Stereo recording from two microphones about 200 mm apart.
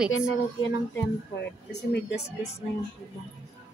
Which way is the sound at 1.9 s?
55° left (ahead or behind).